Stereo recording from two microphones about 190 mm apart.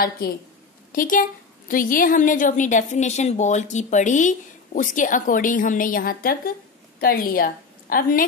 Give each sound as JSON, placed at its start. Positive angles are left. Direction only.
{"t": 0.9, "sound": "a woman's voice", "side_deg": 45}